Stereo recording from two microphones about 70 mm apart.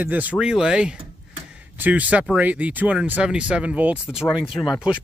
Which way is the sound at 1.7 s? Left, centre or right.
Right.